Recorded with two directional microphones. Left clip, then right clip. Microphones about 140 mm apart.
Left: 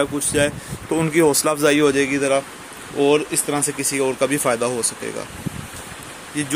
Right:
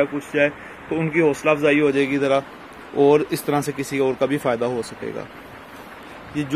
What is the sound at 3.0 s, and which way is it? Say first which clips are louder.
Speech: right 1 dB; 35° right (ahead or behind).